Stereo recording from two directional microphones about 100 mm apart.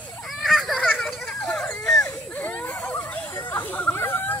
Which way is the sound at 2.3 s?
15° left (ahead or behind).